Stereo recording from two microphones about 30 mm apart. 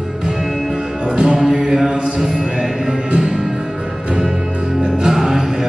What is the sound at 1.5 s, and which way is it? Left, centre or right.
Mantra, centre.